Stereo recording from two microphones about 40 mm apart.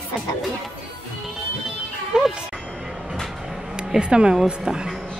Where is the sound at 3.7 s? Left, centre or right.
Centre.